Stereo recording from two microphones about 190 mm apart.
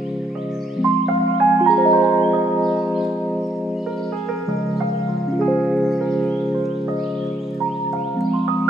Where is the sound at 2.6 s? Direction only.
Centre (ahead or behind).